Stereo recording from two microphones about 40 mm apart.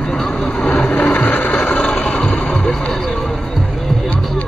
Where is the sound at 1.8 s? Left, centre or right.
Left.